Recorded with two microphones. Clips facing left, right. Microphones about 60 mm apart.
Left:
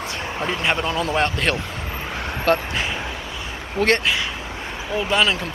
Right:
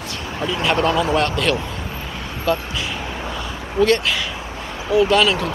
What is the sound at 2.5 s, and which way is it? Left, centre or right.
Speech, left.